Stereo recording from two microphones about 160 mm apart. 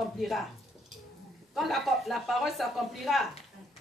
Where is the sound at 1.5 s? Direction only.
Centre (ahead or behind).